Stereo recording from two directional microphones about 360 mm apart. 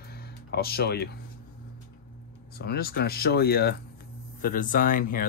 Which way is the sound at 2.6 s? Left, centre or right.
Left.